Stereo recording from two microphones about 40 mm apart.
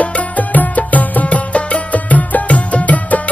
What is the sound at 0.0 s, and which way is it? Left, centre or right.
Music, left.